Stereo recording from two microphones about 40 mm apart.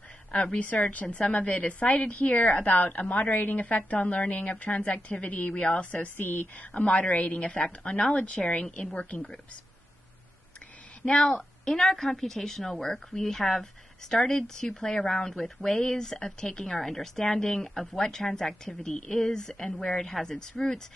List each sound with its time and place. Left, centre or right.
0.3 s speech: left
1.3 s a woman's voice: left
2.5 s a woman's voice: left
3.6 s a woman's voice: left
5.6 s speech: left
5.9 s a woman's voice: left
6.7 s a woman's voice: left
11.0 s speech: left
11.2 s a woman's voice: centre